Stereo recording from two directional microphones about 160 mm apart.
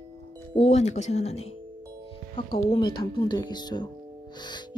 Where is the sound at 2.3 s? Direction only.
30° left (ahead or behind).